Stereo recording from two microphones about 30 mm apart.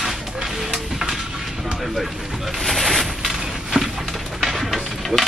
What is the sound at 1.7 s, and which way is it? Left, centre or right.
Vehicle, centre.